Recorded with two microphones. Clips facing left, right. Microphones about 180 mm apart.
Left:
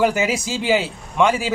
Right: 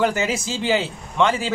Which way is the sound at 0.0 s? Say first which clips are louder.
Left 2 dB; 10° left (ahead or behind).